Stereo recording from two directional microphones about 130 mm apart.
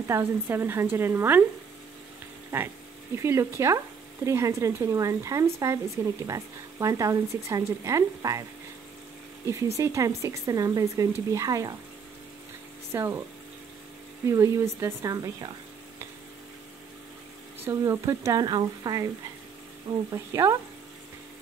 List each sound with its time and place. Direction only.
0.1 s speech: 20° right (ahead or behind)
2.5 s speech: 20° right (ahead or behind)
9.8 s speech: 25° right (ahead or behind)
12.9 s speech: 20° right (ahead or behind)
14.2 s speech: 25° right (ahead or behind)
17.6 s speech: 20° right (ahead or behind)
20.1 s speech: 25° right (ahead or behind)